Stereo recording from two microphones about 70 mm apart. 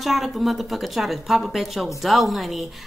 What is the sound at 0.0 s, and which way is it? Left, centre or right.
A woman's voice, centre.